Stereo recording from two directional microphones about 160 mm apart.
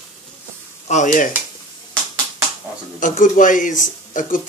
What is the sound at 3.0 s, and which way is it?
Speech, 55° left (ahead or behind).